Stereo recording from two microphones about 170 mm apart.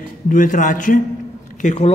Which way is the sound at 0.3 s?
50° left (ahead or behind).